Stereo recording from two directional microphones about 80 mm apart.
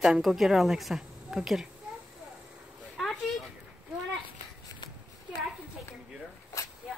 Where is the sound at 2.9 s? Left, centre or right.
Centre.